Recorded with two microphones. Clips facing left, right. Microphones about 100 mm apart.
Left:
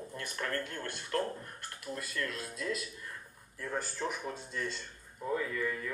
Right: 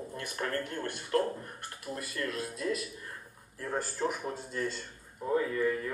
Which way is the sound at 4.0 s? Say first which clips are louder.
Right 5 dB; 40° right (ahead or behind).